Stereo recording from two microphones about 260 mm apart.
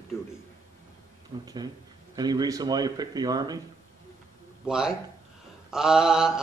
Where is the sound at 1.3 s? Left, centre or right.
Centre.